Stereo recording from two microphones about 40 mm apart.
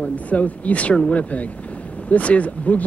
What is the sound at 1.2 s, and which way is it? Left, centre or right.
Speech, left.